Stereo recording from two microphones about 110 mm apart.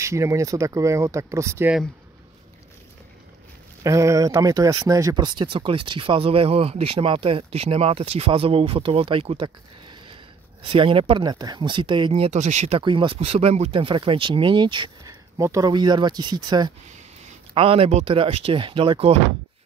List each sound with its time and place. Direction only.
0.0 s speech: 25° right (ahead or behind)
3.8 s speech: 30° right (ahead or behind)
5.1 s speech: 45° right (ahead or behind)
9.8 s a sound: 55° right (ahead or behind)
10.7 s speech: 55° right (ahead or behind)
11.2 s speech: 40° right (ahead or behind)
12.1 s speech: 90° right
12.8 s speech: 50° right (ahead or behind)
15.3 s speech: 30° right (ahead or behind)
15.7 s speech: 40° right (ahead or behind)
17.6 s speech: 60° right (ahead or behind)